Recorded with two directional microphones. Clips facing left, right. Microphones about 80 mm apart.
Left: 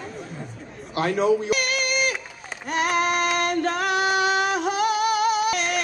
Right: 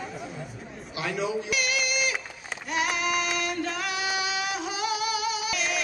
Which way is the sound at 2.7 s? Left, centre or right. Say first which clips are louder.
Left 5 dB; left.